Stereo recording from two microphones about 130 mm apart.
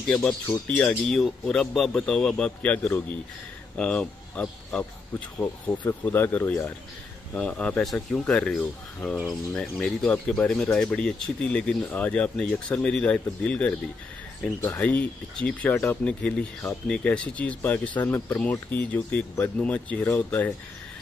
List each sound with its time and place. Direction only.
0.1 s speech: 10° left (ahead or behind)